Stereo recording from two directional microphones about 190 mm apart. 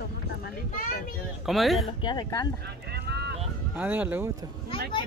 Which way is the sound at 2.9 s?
60° right (ahead or behind).